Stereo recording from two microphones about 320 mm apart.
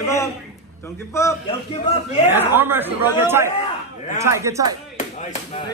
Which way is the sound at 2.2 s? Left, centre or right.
Centre.